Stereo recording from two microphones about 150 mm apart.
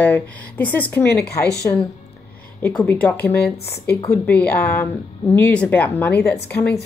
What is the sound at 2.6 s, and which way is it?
Speech, 5° left (ahead or behind).